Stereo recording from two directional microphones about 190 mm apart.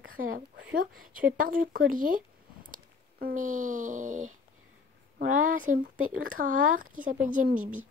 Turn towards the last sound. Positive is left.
turn(degrees=-45)  # may be behind; listen again after turning